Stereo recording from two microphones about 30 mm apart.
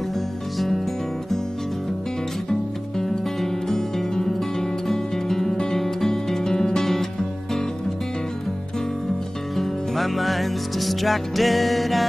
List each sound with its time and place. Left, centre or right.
0.6 s music: centre
3.0 s music: centre
3.7 s music: centre
9.6 s music: centre